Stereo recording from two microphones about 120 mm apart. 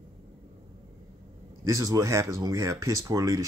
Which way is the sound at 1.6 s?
25° right (ahead or behind).